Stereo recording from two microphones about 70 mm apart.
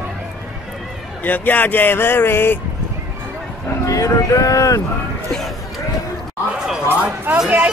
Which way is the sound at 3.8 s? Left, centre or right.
Left.